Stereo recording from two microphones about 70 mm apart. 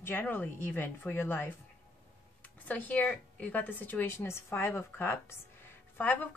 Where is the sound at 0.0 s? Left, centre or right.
Left.